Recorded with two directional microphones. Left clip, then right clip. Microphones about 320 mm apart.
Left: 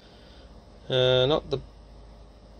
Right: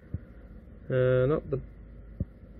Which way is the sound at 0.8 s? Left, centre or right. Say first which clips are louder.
Left 3 dB; centre.